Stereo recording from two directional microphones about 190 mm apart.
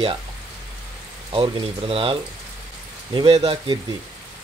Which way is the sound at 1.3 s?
25° right (ahead or behind).